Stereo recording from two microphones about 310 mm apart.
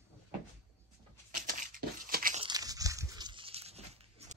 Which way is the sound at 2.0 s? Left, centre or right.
Right.